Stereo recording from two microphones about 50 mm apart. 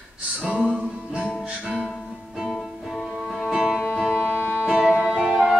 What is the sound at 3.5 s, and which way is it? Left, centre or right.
Music, centre.